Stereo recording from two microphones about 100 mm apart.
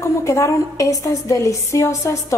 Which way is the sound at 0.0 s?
30° left (ahead or behind).